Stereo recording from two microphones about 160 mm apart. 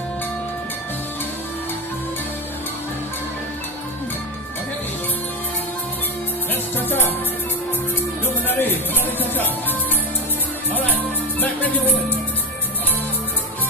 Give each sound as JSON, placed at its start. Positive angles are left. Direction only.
{"t": 6.5, "sound": "music", "side_deg": 10}
{"t": 8.5, "sound": "music", "side_deg": 15}
{"t": 10.9, "sound": "music", "side_deg": 10}